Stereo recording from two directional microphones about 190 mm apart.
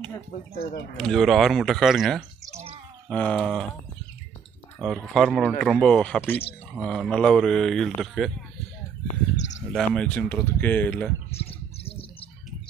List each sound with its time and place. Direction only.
0.9 s speech: centre (ahead or behind)
2.5 s bird: 30° right (ahead or behind)
3.1 s speech: 5° left (ahead or behind)
4.7 s speech: centre (ahead or behind)
9.7 s speech: centre (ahead or behind)
11.3 s a sound: 30° left (ahead or behind)